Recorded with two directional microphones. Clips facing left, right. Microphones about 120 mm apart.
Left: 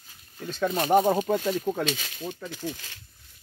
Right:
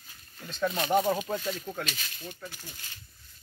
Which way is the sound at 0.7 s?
45° left (ahead or behind).